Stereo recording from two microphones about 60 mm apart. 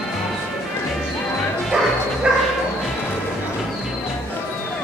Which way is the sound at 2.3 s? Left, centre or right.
Centre.